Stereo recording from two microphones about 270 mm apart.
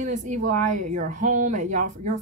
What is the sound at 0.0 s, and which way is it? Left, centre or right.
Speech, right.